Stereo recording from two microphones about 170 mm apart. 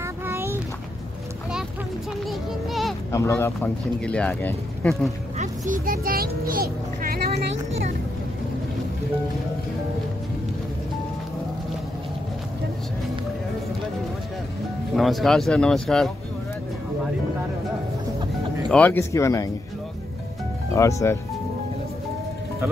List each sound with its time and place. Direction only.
0.0 s a sound: 15° right (ahead or behind)
2.2 s speech: centre (ahead or behind)
3.1 s speech: 15° left (ahead or behind)
5.4 s a child's voice: 55° right (ahead or behind)
15.0 s speech: centre (ahead or behind)
18.7 s speech: 10° left (ahead or behind)
20.7 s speech: 15° left (ahead or behind)